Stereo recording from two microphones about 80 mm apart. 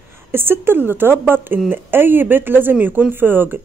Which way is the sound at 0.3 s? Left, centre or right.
Right.